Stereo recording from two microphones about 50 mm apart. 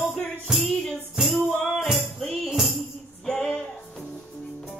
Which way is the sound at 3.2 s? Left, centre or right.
Centre.